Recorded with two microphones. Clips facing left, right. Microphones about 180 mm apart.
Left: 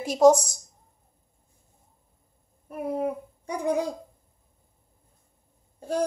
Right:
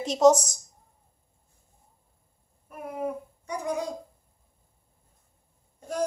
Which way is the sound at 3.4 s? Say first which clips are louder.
Left 5 dB; 30° left (ahead or behind).